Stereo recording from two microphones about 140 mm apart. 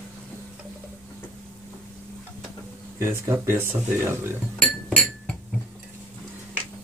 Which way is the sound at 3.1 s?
15° right (ahead or behind).